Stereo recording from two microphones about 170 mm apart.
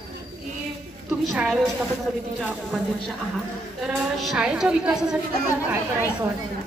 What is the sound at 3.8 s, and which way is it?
A woman's voice, centre (ahead or behind).